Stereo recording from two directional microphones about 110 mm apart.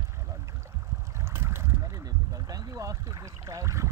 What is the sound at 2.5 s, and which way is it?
Boat, 35° right (ahead or behind).